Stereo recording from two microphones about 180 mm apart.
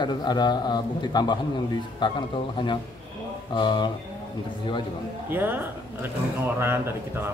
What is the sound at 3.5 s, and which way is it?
Speech, 25° left (ahead or behind).